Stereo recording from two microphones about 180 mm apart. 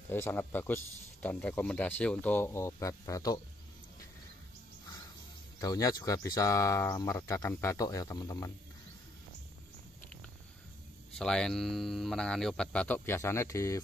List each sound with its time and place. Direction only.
0.1 s speech: 10° left (ahead or behind)
5.6 s speech: 20° left (ahead or behind)
11.1 s speech: 5° left (ahead or behind)